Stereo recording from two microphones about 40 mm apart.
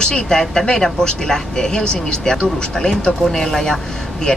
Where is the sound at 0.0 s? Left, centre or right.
Centre.